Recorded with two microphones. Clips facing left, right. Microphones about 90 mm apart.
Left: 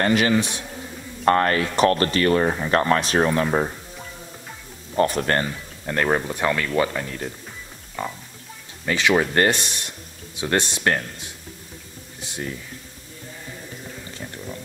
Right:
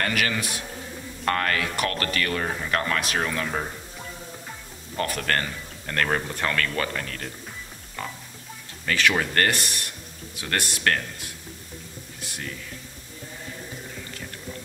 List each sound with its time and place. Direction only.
0.0 s a man's voice: 25° left (ahead or behind)
4.9 s speech: 25° left (ahead or behind)
12.2 s a sound: 20° left (ahead or behind)